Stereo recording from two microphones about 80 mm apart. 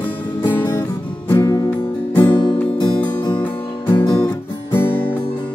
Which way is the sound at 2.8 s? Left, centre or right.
Left.